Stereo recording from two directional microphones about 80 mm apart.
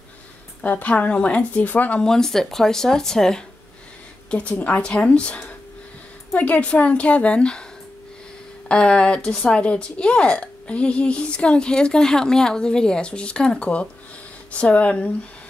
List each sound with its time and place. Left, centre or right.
0.7 s speech: centre
2.0 s speech: centre
8.6 s speech: centre